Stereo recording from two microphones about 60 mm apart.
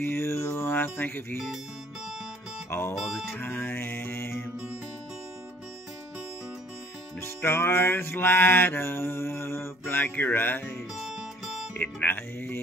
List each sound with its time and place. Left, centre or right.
0.0 s mantra: left
2.9 s speech: centre
3.3 s music: left
7.2 s music: left
11.1 s music: centre
11.8 s music: left